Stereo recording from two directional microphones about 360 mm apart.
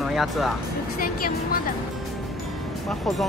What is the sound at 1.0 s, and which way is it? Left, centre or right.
Music, left.